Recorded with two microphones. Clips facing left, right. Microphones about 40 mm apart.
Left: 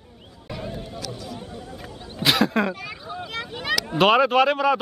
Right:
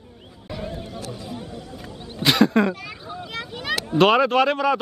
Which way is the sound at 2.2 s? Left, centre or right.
Centre.